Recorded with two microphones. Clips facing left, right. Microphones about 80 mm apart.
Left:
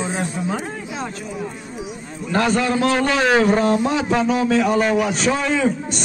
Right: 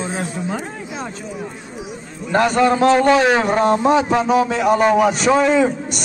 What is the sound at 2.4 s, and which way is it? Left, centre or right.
A man's voice, right.